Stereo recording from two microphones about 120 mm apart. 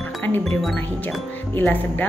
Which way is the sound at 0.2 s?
15° left (ahead or behind).